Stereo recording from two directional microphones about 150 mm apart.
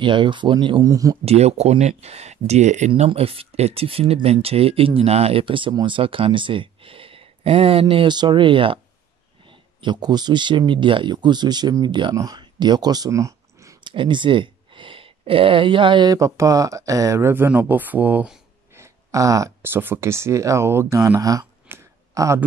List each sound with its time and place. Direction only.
0.0 s speech: 30° right (ahead or behind)
1.2 s speech: 45° right (ahead or behind)
2.9 s speech: 40° right (ahead or behind); by 13.7 s 20° right (ahead or behind)
13.8 s speech: 30° right (ahead or behind); by 18.4 s 10° right (ahead or behind)
18.8 s speech: 20° right (ahead or behind)